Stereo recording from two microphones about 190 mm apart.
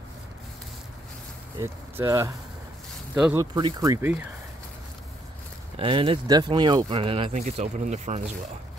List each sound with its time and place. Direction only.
1.6 s speech: 15° right (ahead or behind)
3.3 s speech: 20° right (ahead or behind)
5.8 s speech: 30° right (ahead or behind)